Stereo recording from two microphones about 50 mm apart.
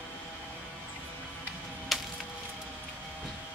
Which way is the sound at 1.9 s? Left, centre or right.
Centre.